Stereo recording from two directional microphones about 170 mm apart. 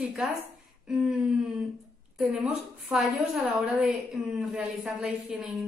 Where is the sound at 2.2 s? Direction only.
5° right (ahead or behind).